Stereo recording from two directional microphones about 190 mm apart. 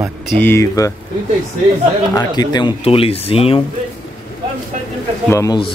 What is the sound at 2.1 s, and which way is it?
Speech, 20° left (ahead or behind).